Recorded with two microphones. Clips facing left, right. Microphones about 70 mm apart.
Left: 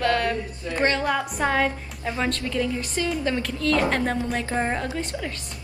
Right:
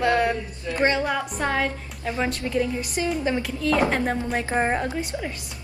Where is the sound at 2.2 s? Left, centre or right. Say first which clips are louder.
Right 1 dB; centre.